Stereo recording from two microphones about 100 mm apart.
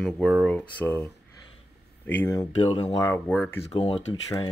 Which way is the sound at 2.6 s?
50° left (ahead or behind).